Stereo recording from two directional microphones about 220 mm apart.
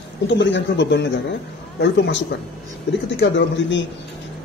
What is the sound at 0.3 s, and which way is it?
A man's voice, 55° left (ahead or behind).